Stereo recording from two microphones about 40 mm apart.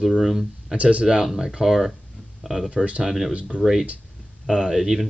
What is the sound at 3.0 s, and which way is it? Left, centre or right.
Speech, centre.